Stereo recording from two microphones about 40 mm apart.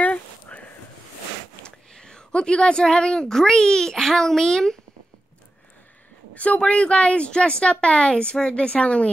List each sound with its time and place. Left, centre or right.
0.0 s a sound: left
2.0 s a child's voice: centre
6.3 s speech: left